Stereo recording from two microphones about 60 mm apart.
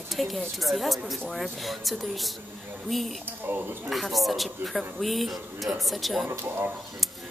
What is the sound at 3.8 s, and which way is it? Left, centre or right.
A man's voice, centre.